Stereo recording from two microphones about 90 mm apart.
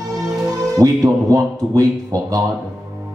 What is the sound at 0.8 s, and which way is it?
Speech, 40° right (ahead or behind).